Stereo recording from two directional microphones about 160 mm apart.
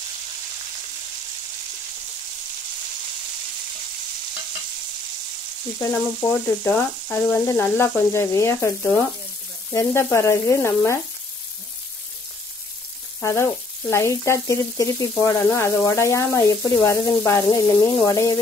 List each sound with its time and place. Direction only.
5.8 s speech: 15° left (ahead or behind)
9.7 s sizzle: 15° left (ahead or behind)
10.1 s speech: 20° left (ahead or behind)
13.2 s speech: 15° left (ahead or behind)